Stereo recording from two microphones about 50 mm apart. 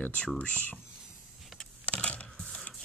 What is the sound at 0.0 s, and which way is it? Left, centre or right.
Speech, left.